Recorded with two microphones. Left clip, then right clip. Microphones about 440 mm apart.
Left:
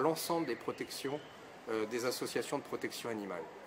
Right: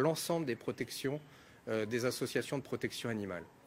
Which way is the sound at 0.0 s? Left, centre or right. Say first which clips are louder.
Even; right.